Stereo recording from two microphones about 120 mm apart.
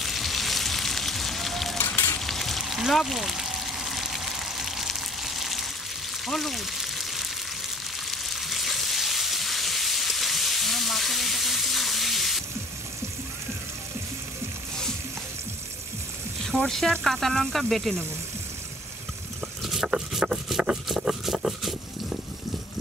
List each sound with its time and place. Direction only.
0.0 s sizzle: centre (ahead or behind)
1.8 s sizzle: 15° left (ahead or behind)
2.1 s frying: centre (ahead or behind)
6.2 s a sound: centre (ahead or behind)
8.1 s frying: centre (ahead or behind)
16.4 s speech: centre (ahead or behind)
19.6 s a sound: centre (ahead or behind)